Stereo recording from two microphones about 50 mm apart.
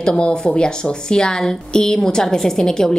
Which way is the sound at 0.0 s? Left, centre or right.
Centre.